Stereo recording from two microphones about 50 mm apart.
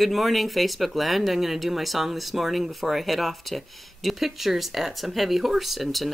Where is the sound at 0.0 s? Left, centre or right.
Centre.